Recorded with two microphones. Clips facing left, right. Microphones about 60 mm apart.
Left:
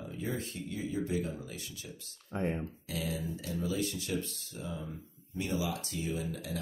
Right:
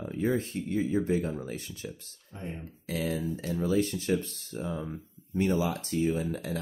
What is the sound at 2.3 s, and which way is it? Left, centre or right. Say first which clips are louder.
Speech: left 6 dB; left.